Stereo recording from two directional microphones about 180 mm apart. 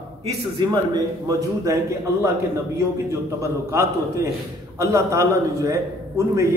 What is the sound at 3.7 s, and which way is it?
A man's voice, 15° right (ahead or behind).